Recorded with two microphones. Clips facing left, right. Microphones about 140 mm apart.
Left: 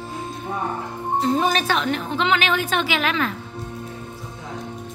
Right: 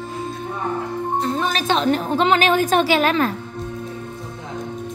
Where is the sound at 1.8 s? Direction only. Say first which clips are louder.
Right 5 dB; 40° right (ahead or behind).